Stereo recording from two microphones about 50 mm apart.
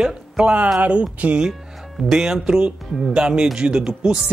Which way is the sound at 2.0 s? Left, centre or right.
Centre.